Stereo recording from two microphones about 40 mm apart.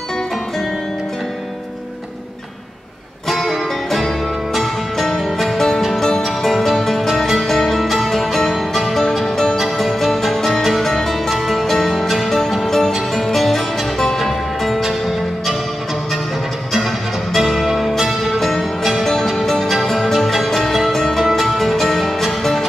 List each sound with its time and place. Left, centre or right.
3.3 s music: centre
9.2 s music: centre
16.7 s music: centre